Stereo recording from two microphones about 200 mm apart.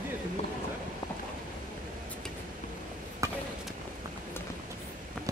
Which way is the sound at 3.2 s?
15° right (ahead or behind).